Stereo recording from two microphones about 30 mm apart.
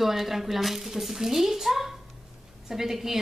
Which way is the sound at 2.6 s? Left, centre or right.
Centre.